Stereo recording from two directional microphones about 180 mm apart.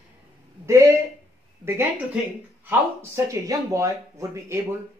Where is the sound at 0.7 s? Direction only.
15° right (ahead or behind).